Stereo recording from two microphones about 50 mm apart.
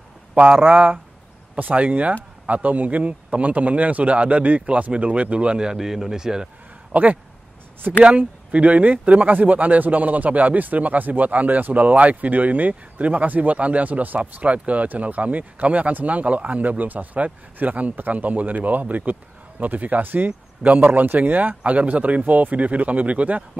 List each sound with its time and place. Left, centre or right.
0.4 s a man's voice: right; by 6.5 s centre
6.9 s speech: right
20.2 s speech: right
20.8 s speech: right